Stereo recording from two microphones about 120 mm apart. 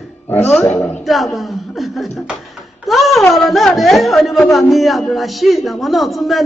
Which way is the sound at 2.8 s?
Centre (ahead or behind).